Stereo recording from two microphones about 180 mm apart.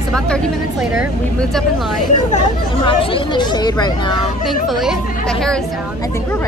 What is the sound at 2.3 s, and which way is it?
Speech, 30° left (ahead or behind).